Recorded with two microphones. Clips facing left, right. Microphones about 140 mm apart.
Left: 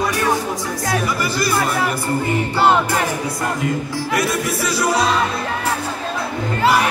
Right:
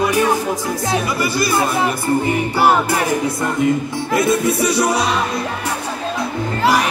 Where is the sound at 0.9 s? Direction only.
20° right (ahead or behind).